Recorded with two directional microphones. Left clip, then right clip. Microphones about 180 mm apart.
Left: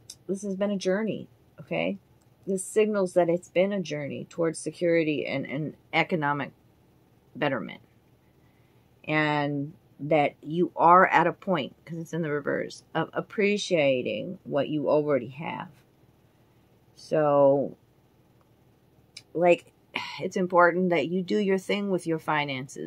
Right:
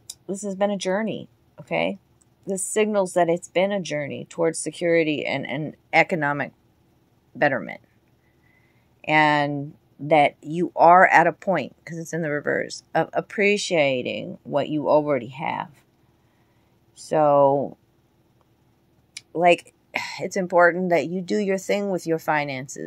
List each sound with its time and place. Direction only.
0.1 s speech: 40° right (ahead or behind)
9.0 s speech: 40° right (ahead or behind)
17.1 s speech: 40° right (ahead or behind)
19.1 s speech: 35° right (ahead or behind)